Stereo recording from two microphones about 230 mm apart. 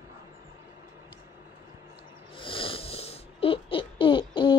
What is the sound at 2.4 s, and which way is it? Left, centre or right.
Wheeze, left.